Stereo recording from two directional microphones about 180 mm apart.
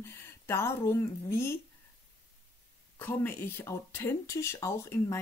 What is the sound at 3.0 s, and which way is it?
Speech, 10° left (ahead or behind).